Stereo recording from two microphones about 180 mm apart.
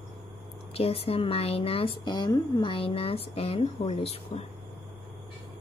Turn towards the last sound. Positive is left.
turn(degrees=35)  # may be behind; listen again after turning